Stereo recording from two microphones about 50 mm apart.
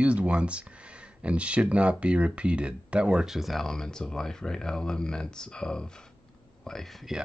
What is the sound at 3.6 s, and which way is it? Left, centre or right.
Speech, centre.